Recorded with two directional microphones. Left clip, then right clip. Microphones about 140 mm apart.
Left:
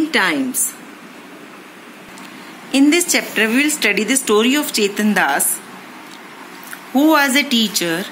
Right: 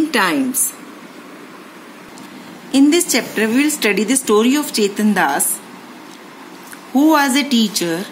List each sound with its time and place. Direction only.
0.1 s a woman's voice: 15° right (ahead or behind)
2.7 s a woman's voice: 15° right (ahead or behind)
7.0 s a woman's voice: 15° right (ahead or behind)